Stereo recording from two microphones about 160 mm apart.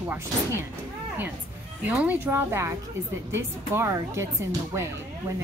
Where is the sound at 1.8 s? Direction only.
10° right (ahead or behind).